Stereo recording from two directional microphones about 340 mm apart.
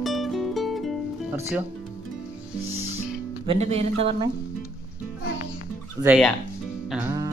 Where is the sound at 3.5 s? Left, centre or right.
Centre.